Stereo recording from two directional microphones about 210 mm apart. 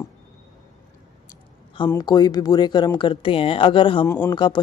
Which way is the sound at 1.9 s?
20° left (ahead or behind).